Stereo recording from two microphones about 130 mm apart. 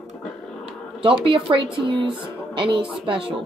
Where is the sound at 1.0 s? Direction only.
40° right (ahead or behind).